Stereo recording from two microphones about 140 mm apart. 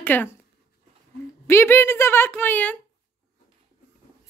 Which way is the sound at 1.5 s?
15° left (ahead or behind).